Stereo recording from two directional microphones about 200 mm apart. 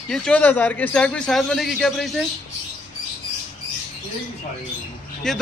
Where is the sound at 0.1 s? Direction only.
5° left (ahead or behind).